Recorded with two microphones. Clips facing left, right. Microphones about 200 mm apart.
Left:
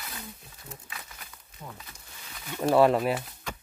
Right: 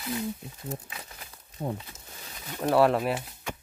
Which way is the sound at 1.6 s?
45° right (ahead or behind).